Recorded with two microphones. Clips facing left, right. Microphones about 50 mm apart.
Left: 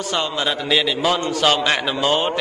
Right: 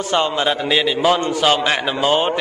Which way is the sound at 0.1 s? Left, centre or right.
Right.